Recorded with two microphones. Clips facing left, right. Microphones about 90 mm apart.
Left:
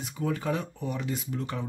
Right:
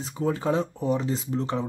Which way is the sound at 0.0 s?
30° right (ahead or behind).